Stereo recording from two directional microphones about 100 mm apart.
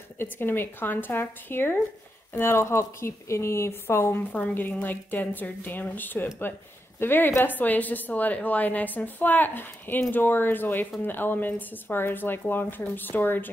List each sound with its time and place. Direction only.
0.2 s a woman's voice: 20° left (ahead or behind)